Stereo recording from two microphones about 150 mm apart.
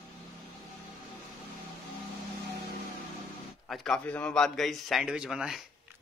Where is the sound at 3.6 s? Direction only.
Centre (ahead or behind).